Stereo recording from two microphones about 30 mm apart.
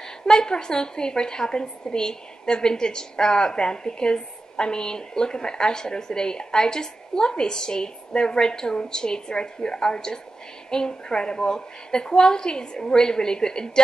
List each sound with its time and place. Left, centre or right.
0.3 s a woman's voice: left